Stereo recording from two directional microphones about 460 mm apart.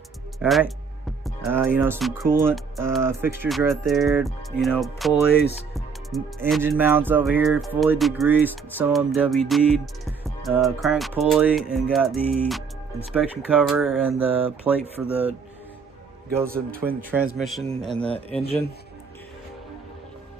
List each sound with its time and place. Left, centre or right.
0.4 s speech: centre
5.3 s speech: left
5.8 s speech: centre
16.5 s speech: centre
18.4 s speech: centre